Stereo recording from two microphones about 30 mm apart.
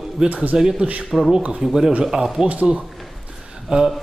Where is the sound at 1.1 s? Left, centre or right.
Centre.